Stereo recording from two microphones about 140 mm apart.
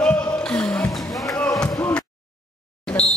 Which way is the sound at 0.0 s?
5° left (ahead or behind).